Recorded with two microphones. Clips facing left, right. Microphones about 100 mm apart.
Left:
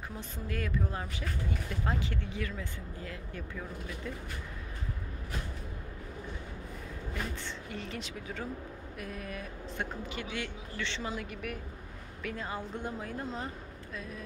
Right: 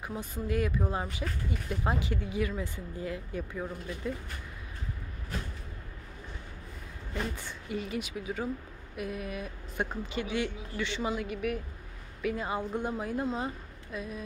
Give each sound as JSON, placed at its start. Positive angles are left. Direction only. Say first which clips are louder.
{"t": 0.1, "sound": "speech", "louder": "right 9 dB", "side_deg": -15}
{"t": 7.2, "sound": "speech", "louder": "right 4 dB", "side_deg": -10}
{"t": 10.1, "sound": "speech", "louder": "right 9 dB", "side_deg": -20}